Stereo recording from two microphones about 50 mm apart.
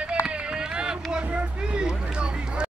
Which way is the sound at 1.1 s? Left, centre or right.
Right.